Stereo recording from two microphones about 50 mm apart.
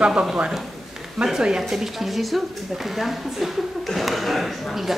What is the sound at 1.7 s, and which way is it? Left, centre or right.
A woman's voice, centre.